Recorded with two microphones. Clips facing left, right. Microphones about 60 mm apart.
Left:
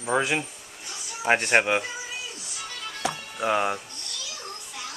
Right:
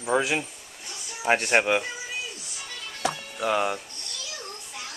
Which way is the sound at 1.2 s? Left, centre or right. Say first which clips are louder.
Left 1 dB; centre.